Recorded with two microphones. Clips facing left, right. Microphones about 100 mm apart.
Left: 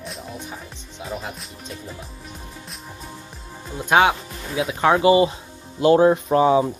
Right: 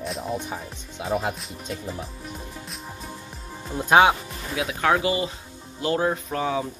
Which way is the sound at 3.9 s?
20° right (ahead or behind).